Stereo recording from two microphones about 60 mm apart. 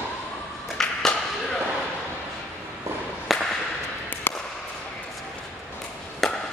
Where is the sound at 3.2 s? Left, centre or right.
Centre.